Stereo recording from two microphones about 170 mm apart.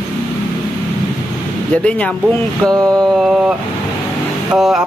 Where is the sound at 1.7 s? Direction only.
5° left (ahead or behind).